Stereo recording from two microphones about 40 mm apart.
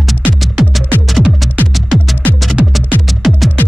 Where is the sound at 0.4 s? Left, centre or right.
Centre.